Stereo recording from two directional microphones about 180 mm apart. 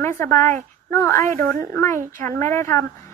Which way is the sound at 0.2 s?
15° left (ahead or behind).